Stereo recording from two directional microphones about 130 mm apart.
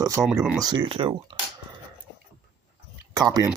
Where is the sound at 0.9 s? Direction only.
45° right (ahead or behind).